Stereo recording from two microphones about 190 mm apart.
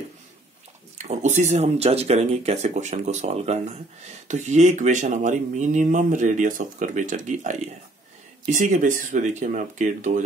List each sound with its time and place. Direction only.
0.9 s speech: 35° right (ahead or behind)